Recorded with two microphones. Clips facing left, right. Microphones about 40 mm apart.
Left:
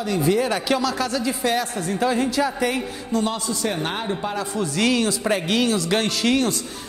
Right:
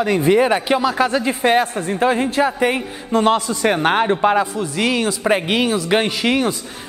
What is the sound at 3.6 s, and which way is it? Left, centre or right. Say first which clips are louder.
Speech: right 9 dB; right.